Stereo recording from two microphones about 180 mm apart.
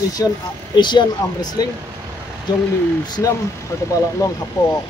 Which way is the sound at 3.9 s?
20° left (ahead or behind).